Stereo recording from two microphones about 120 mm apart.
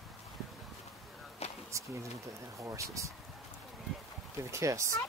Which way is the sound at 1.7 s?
25° right (ahead or behind).